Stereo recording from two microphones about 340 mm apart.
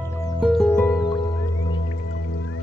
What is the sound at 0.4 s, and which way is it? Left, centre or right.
Music, centre.